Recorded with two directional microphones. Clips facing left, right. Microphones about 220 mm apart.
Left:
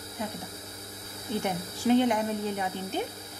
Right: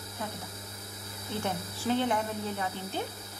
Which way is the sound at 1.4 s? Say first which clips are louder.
Left 3 dB; 15° left (ahead or behind).